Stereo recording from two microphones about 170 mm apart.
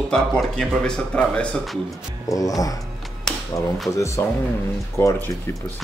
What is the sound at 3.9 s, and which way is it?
Speech, 15° left (ahead or behind).